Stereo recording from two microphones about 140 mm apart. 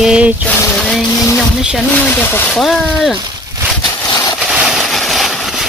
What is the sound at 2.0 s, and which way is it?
Speech, 15° left (ahead or behind).